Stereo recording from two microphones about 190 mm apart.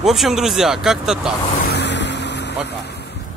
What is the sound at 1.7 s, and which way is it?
Vehicle, 65° left (ahead or behind).